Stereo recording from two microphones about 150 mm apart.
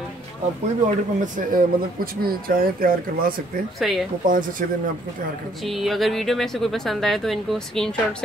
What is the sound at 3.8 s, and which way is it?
Speech, centre (ahead or behind).